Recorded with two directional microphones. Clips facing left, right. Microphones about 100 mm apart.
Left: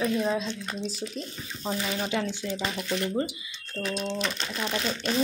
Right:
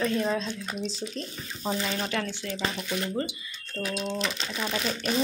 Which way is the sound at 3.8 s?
10° right (ahead or behind).